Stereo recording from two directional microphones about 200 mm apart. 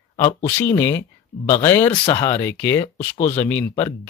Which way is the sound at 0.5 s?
10° left (ahead or behind).